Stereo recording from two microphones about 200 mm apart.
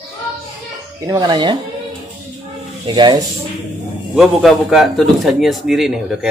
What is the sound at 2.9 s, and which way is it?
Speech, 20° right (ahead or behind).